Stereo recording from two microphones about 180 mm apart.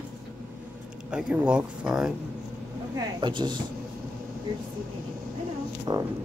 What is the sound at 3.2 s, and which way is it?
Speech, 25° right (ahead or behind).